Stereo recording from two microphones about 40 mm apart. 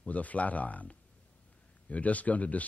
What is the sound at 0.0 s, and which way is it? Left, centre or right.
A man's voice, left.